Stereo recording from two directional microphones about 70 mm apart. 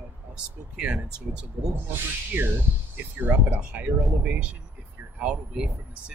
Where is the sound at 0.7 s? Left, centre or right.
Centre.